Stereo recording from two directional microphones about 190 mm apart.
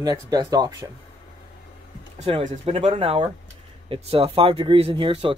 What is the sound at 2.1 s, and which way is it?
Speech, 35° right (ahead or behind).